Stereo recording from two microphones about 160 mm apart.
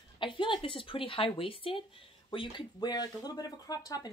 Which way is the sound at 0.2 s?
30° left (ahead or behind).